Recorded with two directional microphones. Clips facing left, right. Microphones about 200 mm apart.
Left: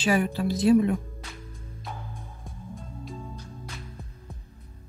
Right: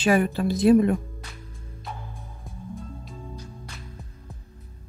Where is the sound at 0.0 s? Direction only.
55° right (ahead or behind).